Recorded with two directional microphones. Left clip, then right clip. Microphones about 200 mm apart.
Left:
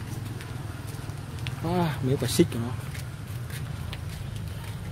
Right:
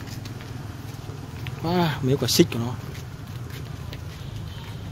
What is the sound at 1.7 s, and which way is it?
Speech, 20° right (ahead or behind).